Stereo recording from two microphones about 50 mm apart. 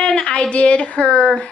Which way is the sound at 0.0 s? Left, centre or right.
Centre.